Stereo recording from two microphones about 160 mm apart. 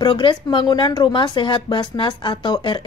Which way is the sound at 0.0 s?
30° left (ahead or behind).